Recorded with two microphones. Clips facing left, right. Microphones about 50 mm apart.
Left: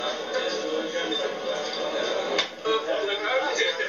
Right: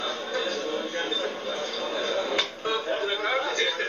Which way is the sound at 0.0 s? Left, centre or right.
Right.